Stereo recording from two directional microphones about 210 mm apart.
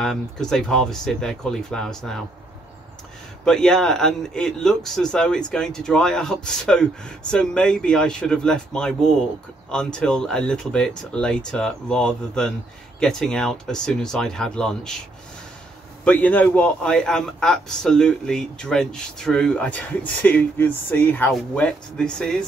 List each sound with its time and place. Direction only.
0.0 s a man's voice: centre (ahead or behind)
3.4 s a man's voice: 5° left (ahead or behind)
16.0 s a man's voice: 5° left (ahead or behind)